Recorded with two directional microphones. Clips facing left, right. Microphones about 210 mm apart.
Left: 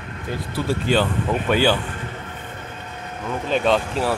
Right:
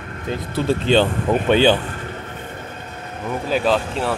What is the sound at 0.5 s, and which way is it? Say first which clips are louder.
Speech: right 4 dB; 25° right (ahead or behind).